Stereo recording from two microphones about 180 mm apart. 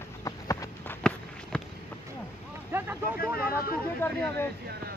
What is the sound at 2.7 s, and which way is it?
Boat, 15° right (ahead or behind).